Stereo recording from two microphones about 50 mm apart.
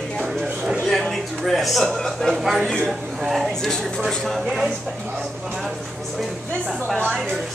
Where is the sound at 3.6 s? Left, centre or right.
Centre.